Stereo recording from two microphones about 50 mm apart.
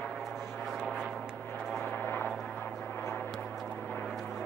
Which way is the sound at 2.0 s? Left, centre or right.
Left.